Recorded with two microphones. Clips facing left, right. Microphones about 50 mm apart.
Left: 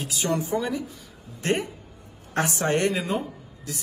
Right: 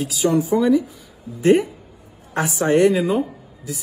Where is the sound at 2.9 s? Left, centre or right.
Centre.